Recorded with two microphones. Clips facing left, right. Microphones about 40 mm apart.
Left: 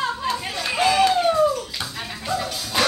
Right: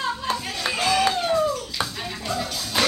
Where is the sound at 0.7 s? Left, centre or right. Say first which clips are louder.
Left 4 dB; centre.